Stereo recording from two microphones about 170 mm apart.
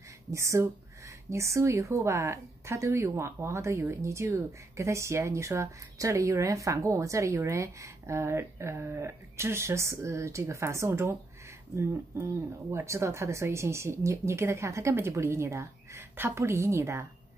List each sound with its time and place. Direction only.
0.3 s speech: 15° right (ahead or behind)